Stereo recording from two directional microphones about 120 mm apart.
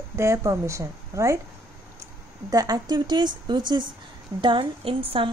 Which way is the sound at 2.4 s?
30° right (ahead or behind).